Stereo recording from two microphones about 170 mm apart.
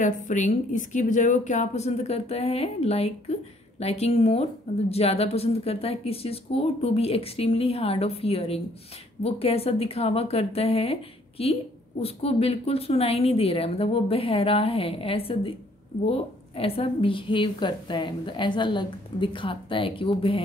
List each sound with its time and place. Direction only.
0.0 s a woman's voice: 50° left (ahead or behind); by 20.4 s 30° left (ahead or behind)